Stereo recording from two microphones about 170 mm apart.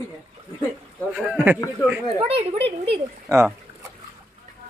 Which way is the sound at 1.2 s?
10° right (ahead or behind).